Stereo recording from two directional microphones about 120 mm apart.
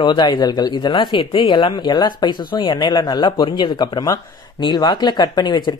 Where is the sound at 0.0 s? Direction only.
40° left (ahead or behind).